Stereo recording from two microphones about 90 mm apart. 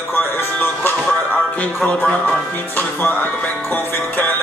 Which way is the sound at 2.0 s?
10° left (ahead or behind).